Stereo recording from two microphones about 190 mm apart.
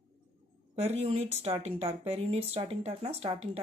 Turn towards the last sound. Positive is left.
turn(degrees=-35)  # may be behind; listen again after turning